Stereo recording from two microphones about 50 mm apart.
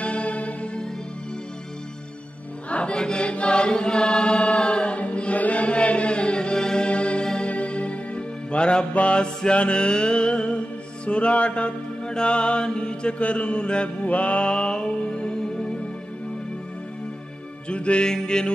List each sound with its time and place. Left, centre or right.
0.0 s music: left
2.7 s chant: left
7.2 s music: left
11.1 s mantra: left
17.6 s mantra: left